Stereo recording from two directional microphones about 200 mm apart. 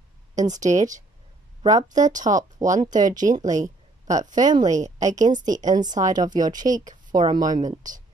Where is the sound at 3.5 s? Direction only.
15° right (ahead or behind).